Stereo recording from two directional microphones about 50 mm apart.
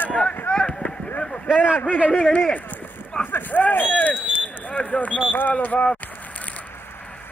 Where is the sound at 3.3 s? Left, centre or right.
Left.